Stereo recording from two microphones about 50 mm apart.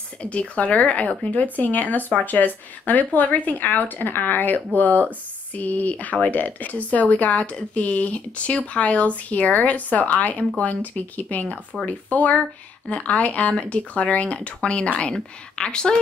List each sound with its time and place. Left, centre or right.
0.2 s speech: left